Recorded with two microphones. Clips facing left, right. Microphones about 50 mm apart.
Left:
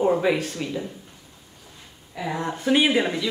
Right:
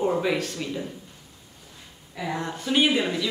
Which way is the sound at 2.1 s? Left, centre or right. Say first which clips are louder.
Left 2 dB; centre.